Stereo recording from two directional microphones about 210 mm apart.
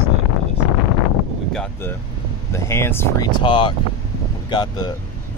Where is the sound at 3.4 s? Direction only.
25° left (ahead or behind).